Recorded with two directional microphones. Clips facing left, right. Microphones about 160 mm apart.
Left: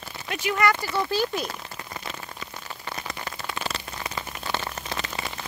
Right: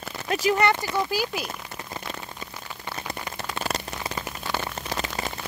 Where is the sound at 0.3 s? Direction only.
35° right (ahead or behind).